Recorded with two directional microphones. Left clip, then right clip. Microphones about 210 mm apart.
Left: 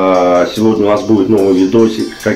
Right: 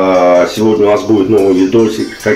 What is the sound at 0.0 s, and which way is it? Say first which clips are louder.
Speech: right 2 dB; centre (ahead or behind).